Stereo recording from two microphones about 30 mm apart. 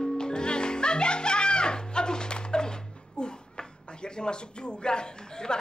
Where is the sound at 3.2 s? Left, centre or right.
Left.